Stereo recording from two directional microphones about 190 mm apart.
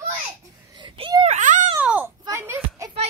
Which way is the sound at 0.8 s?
25° right (ahead or behind).